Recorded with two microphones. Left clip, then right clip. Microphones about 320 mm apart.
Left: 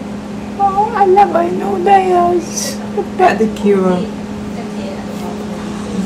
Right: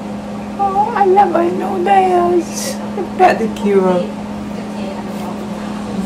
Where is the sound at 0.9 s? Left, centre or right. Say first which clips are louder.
Left 1 dB; centre.